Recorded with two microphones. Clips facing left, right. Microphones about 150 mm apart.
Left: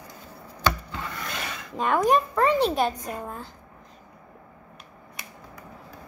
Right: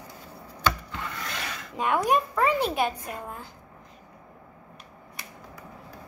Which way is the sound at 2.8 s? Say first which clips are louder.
Left 2 dB; 40° left (ahead or behind).